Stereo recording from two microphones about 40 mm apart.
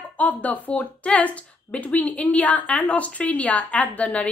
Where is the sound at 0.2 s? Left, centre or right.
Left.